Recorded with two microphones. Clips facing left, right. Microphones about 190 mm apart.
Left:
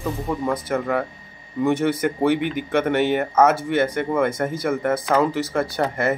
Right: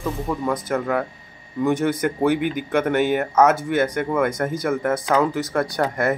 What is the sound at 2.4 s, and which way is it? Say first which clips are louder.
Speech: right 1 dB; 45° right (ahead or behind).